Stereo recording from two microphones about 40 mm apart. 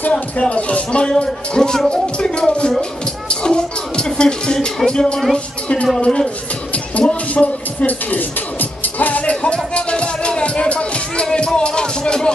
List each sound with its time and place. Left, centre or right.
0.4 s speech: left
1.0 s speech: centre
3.3 s music: left
4.7 s speech: centre
5.3 s speech: left
6.7 s music: left
7.8 s music: left
9.3 s music: left